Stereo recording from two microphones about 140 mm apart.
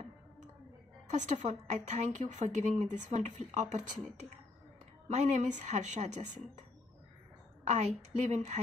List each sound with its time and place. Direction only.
1.0 s a woman's voice: 60° right (ahead or behind)
5.0 s a woman's voice: 55° right (ahead or behind)
7.6 s a woman's voice: 55° right (ahead or behind)